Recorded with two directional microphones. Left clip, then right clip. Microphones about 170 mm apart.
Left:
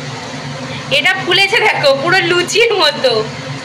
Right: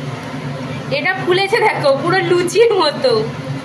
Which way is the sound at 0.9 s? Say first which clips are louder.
Left 4 dB; 15° right (ahead or behind).